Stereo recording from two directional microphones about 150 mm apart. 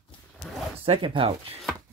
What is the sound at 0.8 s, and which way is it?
Speech, 35° right (ahead or behind).